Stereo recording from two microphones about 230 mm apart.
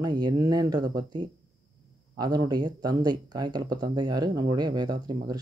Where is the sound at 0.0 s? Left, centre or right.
Centre.